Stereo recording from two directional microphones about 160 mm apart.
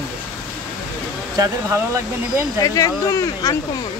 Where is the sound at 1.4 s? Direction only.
20° right (ahead or behind).